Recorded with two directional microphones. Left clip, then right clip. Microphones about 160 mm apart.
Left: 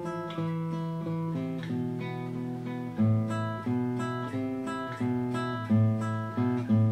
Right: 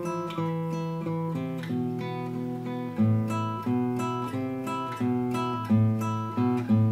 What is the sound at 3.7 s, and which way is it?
Music, 30° right (ahead or behind).